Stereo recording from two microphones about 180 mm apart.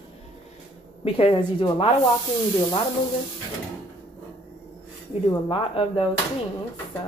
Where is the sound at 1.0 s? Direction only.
30° left (ahead or behind).